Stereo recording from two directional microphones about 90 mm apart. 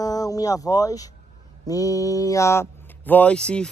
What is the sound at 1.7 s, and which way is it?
Mantra, 40° left (ahead or behind).